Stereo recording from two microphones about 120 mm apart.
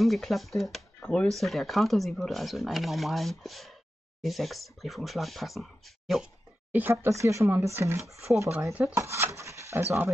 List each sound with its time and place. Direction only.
0.0 s speech: centre (ahead or behind)
6.7 s speech: 20° right (ahead or behind)